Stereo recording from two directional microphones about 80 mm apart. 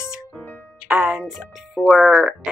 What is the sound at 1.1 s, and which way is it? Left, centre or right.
Speech, centre.